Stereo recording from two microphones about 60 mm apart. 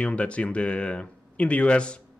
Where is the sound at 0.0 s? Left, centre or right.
Left.